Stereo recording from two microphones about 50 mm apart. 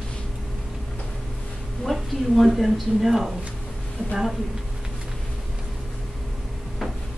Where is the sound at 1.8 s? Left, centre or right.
Centre.